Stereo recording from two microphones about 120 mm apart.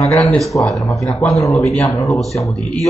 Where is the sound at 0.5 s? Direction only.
20° left (ahead or behind).